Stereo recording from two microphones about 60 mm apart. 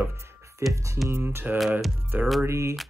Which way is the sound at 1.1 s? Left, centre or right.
Right.